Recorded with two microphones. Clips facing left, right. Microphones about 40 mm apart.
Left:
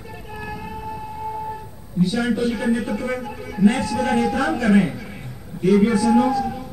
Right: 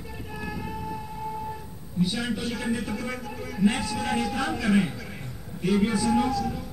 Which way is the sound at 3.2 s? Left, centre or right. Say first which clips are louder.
Left 5 dB; centre.